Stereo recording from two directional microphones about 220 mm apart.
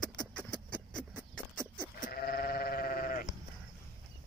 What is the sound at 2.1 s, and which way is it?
Sheep, 45° left (ahead or behind).